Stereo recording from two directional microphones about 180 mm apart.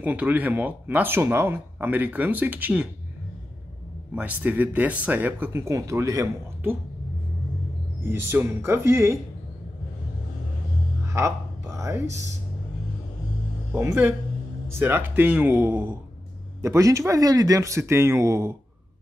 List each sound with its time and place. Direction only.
0.0 s speech: 10° right (ahead or behind)
4.1 s speech: 10° right (ahead or behind)
8.0 s speech: 15° right (ahead or behind)
11.1 s music: 15° right (ahead or behind)
13.7 s speech: 15° right (ahead or behind)